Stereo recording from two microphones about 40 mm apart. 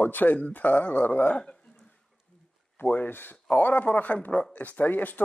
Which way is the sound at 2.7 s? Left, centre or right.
Left.